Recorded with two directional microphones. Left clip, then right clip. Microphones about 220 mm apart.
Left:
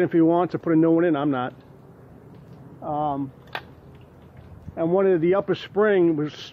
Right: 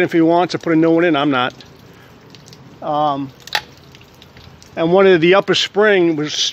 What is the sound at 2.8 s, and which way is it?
Speech, 55° right (ahead or behind).